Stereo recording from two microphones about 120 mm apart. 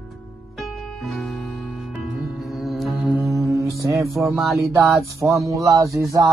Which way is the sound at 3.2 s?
25° right (ahead or behind).